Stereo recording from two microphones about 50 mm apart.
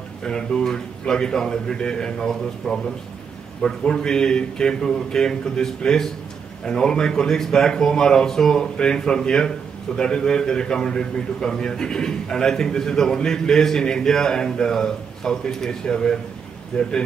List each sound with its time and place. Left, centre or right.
0.2 s a man's voice: centre